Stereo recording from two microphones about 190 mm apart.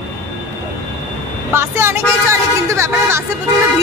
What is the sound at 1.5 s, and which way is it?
Speech, 15° right (ahead or behind).